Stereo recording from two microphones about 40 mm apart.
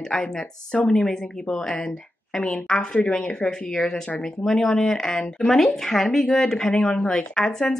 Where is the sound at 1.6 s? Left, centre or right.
Centre.